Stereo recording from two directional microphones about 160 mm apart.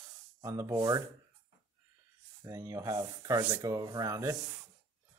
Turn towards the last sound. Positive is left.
turn(degrees=-20)  # may be behind; listen again after turning